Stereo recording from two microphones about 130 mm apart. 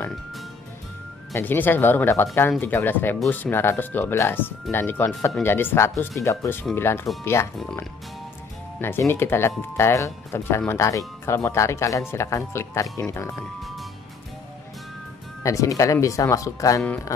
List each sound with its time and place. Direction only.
1.3 s speech: 15° left (ahead or behind)
8.7 s speech: 15° left (ahead or behind)
13.6 s music: centre (ahead or behind)
15.4 s speech: 25° left (ahead or behind)